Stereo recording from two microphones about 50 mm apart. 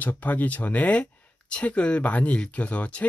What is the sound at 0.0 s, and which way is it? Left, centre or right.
Speech, left.